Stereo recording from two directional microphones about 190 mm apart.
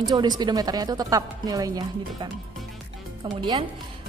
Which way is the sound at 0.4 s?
20° right (ahead or behind).